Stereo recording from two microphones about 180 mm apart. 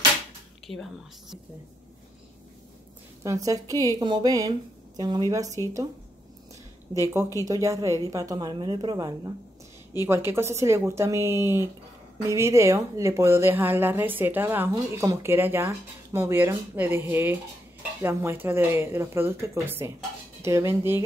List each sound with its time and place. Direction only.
3.3 s a woman's voice: 20° right (ahead or behind)
5.6 s speech: 15° left (ahead or behind)
6.9 s a woman's voice: 15° right (ahead or behind)